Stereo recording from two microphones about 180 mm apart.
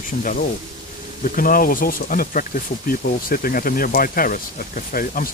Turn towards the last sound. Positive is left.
turn(degrees=50)  # may be behind; listen again after turning